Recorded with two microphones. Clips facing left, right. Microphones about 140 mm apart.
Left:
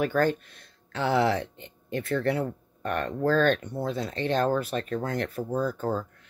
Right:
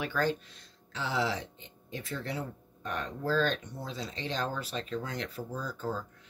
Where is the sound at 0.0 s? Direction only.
50° left (ahead or behind).